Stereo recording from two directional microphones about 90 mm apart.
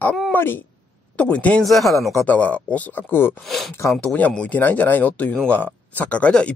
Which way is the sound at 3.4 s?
Centre (ahead or behind).